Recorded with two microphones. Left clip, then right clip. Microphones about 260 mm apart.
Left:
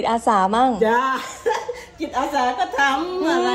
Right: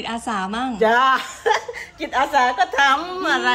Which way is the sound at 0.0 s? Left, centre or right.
Centre.